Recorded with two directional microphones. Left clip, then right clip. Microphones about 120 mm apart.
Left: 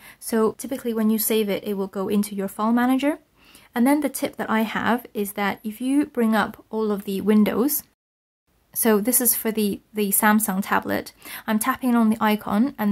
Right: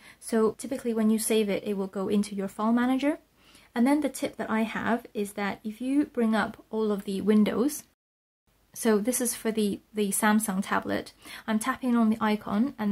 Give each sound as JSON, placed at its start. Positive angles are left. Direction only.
{"t": 0.0, "sound": "a woman's voice", "side_deg": 30}